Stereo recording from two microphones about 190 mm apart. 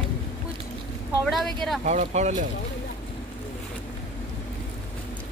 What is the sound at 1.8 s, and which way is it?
Speech, 35° right (ahead or behind).